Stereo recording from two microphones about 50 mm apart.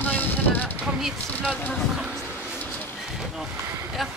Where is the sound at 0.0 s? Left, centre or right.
Left.